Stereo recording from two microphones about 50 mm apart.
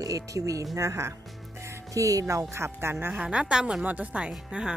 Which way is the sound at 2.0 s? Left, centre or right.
Right.